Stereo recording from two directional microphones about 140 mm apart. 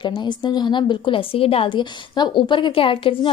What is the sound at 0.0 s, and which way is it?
A woman's voice, 35° left (ahead or behind).